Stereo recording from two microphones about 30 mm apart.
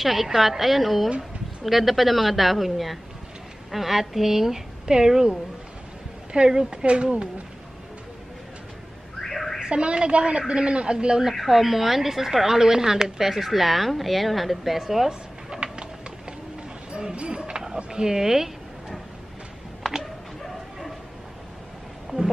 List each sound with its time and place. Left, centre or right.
0.0 s speech: centre
4.9 s a woman's voice: right
6.5 s a woman's voice: right
9.2 s a sound: centre
9.6 s a woman's voice: right
11.3 s speech: centre; by 13.1 s right
13.2 s speech: centre
15.6 s bird: right
16.9 s a woman's voice: right; by 18.9 s centre